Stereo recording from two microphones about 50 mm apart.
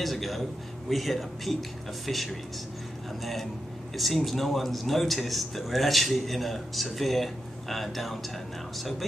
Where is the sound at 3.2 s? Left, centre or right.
Centre.